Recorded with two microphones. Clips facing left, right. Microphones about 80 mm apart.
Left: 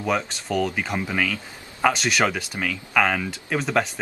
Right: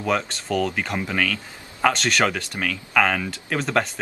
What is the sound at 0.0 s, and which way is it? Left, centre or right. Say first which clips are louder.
A man's voice: right 1 dB; centre.